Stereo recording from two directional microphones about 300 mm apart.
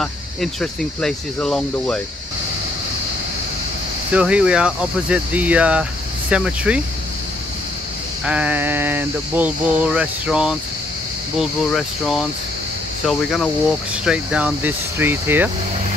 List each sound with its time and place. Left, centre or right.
0.0 s speech: centre
4.1 s speech: centre
8.3 s speech: centre